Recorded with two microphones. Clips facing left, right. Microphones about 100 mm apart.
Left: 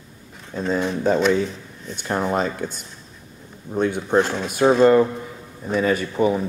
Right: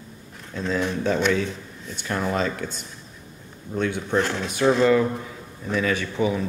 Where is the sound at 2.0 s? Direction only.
30° left (ahead or behind).